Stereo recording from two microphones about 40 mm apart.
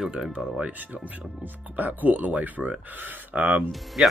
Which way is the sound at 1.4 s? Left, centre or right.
Right.